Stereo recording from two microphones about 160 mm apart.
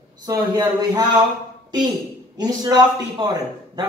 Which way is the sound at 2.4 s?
25° right (ahead or behind).